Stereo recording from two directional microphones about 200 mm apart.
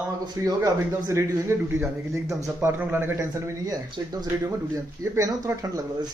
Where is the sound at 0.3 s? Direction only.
20° right (ahead or behind).